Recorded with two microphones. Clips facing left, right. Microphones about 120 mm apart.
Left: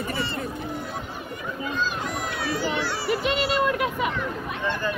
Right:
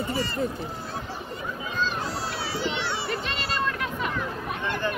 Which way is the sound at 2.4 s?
25° right (ahead or behind).